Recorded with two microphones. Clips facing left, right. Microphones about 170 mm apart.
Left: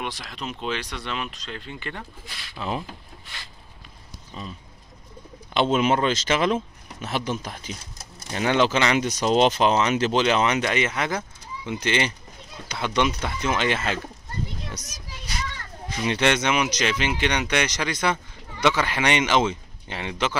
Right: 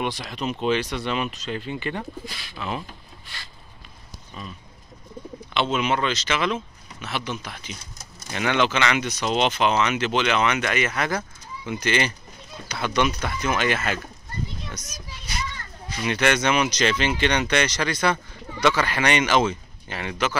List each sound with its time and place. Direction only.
0.0 s speech: centre (ahead or behind)
4.3 s speech: 30° left (ahead or behind)
5.5 s speech: 45° left (ahead or behind); by 14.0 s 25° left (ahead or behind)
14.8 s speech: 75° left (ahead or behind)
16.1 s speech: 25° left (ahead or behind)